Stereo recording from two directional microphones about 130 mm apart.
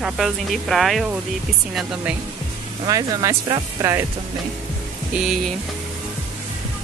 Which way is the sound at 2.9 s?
25° right (ahead or behind).